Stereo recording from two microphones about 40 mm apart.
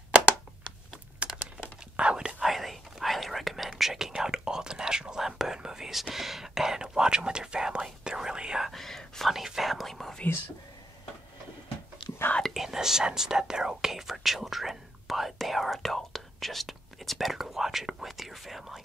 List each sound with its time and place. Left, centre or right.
1.2 s a sound: right
2.0 s whispering: right
2.4 s whispering: centre
8.6 s whispering: centre
9.3 s speech: centre
12.5 s whispering: centre